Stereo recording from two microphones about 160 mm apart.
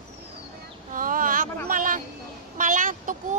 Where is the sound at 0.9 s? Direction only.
60° right (ahead or behind).